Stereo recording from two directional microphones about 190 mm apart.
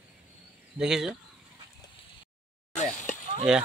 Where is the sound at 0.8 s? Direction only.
5° right (ahead or behind).